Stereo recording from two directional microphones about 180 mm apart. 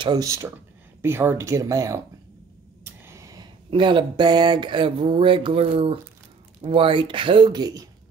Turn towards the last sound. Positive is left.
turn(degrees=-20)  # may be behind; listen again after turning